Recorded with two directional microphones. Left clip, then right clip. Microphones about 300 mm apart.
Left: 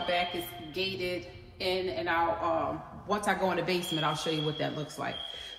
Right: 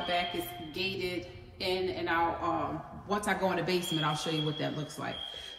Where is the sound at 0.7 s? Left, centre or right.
Centre.